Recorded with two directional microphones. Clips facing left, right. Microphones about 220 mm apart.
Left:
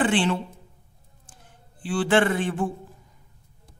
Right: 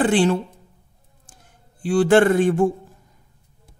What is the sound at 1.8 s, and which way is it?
Speech, 45° right (ahead or behind).